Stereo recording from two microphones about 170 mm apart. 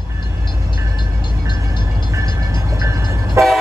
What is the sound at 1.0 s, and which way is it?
Vehicle, 25° left (ahead or behind).